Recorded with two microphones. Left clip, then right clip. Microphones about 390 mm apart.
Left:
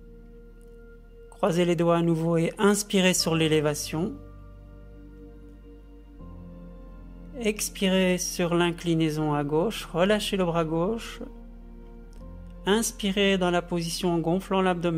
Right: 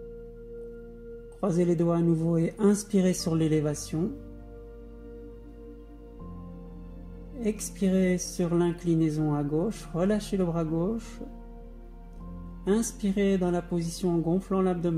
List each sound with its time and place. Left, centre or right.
1.4 s speech: left
7.4 s speech: left
9.7 s speech: left
12.6 s speech: left